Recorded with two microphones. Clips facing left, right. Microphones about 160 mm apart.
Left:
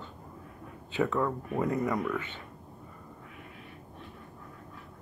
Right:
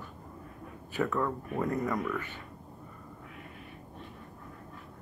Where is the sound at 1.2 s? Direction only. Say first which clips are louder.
Left 2 dB; 5° left (ahead or behind).